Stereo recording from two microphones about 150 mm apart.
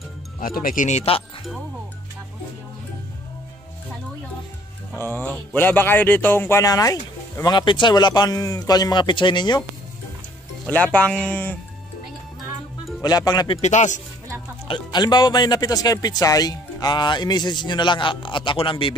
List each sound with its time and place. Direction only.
0.4 s speech: 70° left (ahead or behind); by 1.2 s 45° left (ahead or behind)
4.9 s speech: 15° left (ahead or behind); by 9.6 s 30° left (ahead or behind)
10.7 s speech: 10° left (ahead or behind)
13.0 s speech: 25° left (ahead or behind)
13.6 s speech: 50° left (ahead or behind)
14.7 s speech: 30° left (ahead or behind)